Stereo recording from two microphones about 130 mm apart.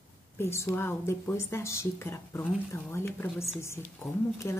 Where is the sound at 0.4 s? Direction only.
20° left (ahead or behind).